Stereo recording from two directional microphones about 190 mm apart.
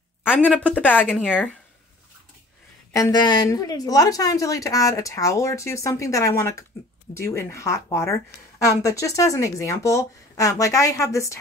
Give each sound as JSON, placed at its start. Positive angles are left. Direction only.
{"t": 0.7, "sound": "a woman's voice", "side_deg": 10}
{"t": 2.9, "sound": "a woman's voice", "side_deg": 20}